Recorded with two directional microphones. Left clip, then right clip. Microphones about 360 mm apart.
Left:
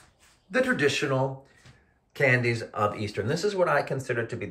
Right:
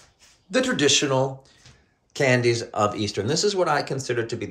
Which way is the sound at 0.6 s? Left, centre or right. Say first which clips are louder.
Right 4 dB; centre.